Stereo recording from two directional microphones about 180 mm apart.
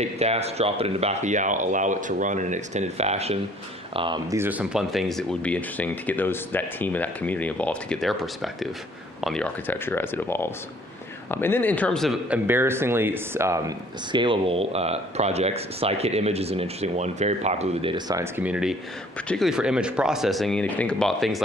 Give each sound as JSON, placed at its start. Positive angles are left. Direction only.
{"t": 0.0, "sound": "speech", "side_deg": -35}
{"t": 4.4, "sound": "speech", "side_deg": -10}
{"t": 17.9, "sound": "speech", "side_deg": -20}